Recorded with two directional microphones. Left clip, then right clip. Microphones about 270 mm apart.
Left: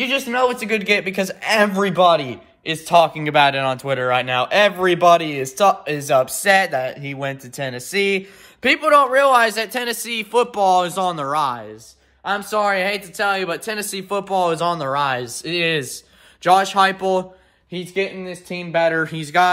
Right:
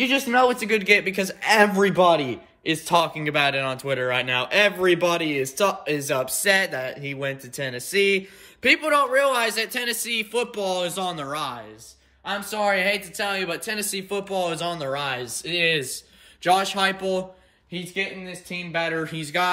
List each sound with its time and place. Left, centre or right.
0.0 s a man's voice: centre
12.3 s a man's voice: centre